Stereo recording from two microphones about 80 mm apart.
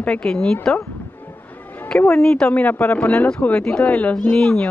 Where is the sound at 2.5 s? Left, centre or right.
Left; by 4.6 s centre.